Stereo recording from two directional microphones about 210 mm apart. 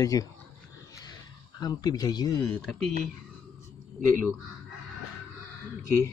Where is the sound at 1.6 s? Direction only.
20° left (ahead or behind).